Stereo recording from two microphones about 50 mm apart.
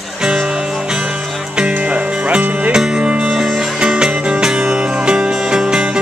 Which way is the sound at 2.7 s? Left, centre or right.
Centre.